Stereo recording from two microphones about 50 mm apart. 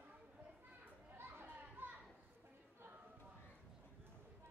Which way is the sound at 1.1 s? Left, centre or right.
Right.